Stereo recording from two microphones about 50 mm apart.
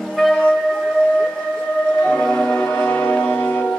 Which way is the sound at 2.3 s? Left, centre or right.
Centre.